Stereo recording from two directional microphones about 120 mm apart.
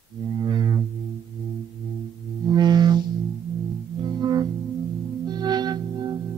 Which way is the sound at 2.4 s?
35° right (ahead or behind).